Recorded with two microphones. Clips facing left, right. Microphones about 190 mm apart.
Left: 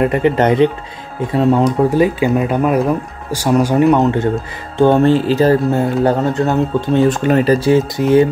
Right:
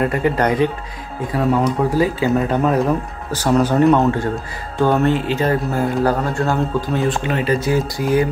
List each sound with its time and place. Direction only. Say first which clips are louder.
0.0 s speech: left 4 dB; 20° left (ahead or behind)
7.1 s speech: left 7 dB; 45° left (ahead or behind)
7.6 s speech: left 6 dB; 25° left (ahead or behind)